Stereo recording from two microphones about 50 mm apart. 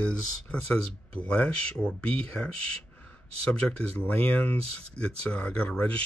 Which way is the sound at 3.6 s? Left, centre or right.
Left.